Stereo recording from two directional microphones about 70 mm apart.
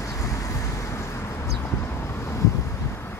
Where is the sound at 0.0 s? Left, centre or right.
Left.